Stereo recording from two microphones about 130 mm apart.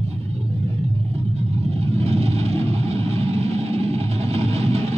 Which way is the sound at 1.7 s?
50° right (ahead or behind).